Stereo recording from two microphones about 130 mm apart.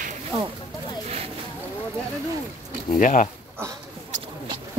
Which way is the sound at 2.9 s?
85° left.